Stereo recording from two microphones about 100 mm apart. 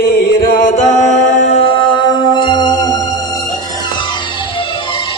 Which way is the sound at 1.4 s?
80° left.